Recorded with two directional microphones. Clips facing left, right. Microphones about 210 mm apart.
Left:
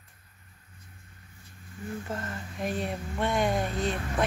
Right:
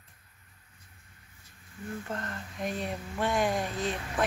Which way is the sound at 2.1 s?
5° left (ahead or behind).